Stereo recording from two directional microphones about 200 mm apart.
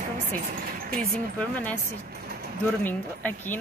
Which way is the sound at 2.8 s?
10° left (ahead or behind).